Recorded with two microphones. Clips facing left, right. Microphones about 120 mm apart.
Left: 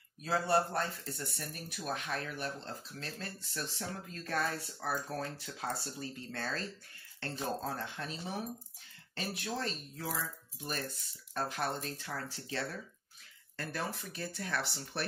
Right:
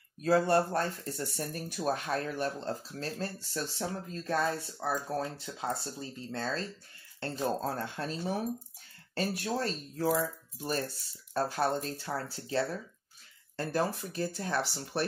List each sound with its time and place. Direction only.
0.2 s speech: 45° right (ahead or behind); by 6.7 s 25° right (ahead or behind)
7.4 s speech: 40° right (ahead or behind)